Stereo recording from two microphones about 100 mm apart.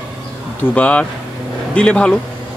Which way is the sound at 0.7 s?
15° left (ahead or behind).